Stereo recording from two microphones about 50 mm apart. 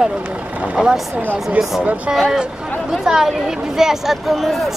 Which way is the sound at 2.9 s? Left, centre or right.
Centre.